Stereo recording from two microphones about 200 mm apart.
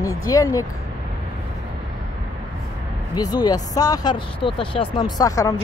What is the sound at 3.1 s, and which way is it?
Speech, 20° left (ahead or behind).